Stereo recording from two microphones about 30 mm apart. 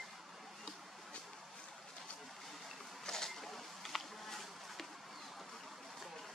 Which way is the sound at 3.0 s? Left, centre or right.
Centre.